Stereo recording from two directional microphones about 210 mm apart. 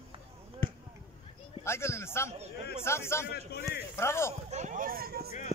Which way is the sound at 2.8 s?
10° left (ahead or behind).